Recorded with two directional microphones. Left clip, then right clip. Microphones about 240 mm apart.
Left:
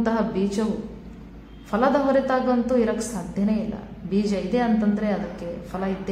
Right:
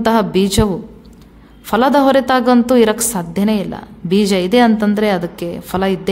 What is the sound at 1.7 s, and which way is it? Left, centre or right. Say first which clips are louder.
A woman's voice: right 9 dB; right.